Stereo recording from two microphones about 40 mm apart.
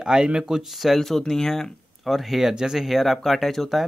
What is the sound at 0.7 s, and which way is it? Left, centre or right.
Speech, centre.